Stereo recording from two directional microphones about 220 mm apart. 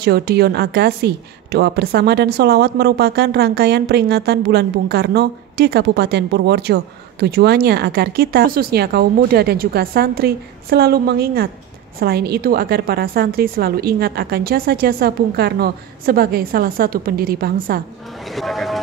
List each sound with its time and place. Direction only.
0.0 s a woman's voice: 45° right (ahead or behind)
18.3 s speech: centre (ahead or behind)